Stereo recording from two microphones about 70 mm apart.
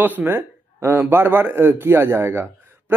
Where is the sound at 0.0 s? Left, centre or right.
Right.